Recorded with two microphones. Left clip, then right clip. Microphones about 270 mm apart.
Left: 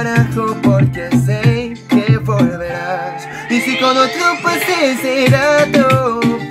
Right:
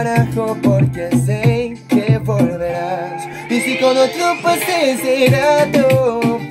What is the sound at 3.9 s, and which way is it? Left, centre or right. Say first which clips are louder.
Music: left 1 dB; centre.